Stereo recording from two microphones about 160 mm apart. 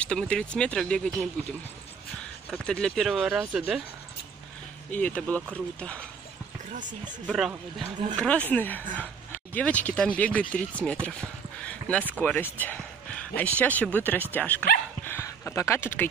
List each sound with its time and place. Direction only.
0.0 s speech: 5° left (ahead or behind)
2.5 s speech: 5° left (ahead or behind)
4.9 s speech: 10° left (ahead or behind)
6.7 s speech: 50° right (ahead or behind)
7.2 s speech: centre (ahead or behind); by 16.1 s 15° left (ahead or behind)